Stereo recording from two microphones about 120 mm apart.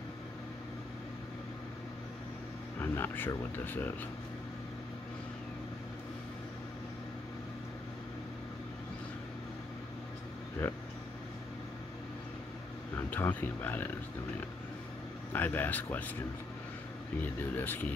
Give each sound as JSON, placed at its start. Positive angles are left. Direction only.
{"t": 2.8, "sound": "speech", "side_deg": 20}
{"t": 10.6, "sound": "speech", "side_deg": 20}
{"t": 12.9, "sound": "speech", "side_deg": 15}
{"t": 15.3, "sound": "speech", "side_deg": 15}
{"t": 17.2, "sound": "speech", "side_deg": 15}